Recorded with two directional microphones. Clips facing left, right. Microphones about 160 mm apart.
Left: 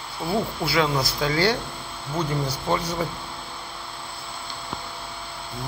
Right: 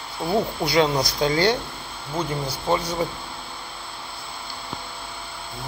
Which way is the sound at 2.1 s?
10° right (ahead or behind).